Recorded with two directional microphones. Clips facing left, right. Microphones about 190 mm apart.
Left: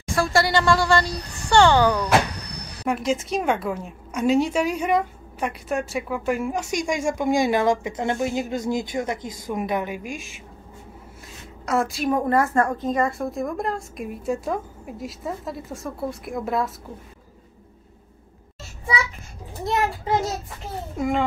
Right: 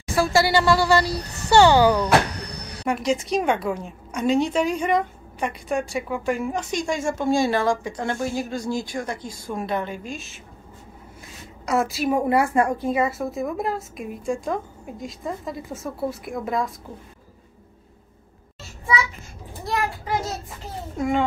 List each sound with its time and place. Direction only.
0.0 s a woman's voice: centre (ahead or behind)
11.6 s a woman's voice: centre (ahead or behind)
19.6 s a child's voice: 25° left (ahead or behind)
21.0 s a woman's voice: centre (ahead or behind)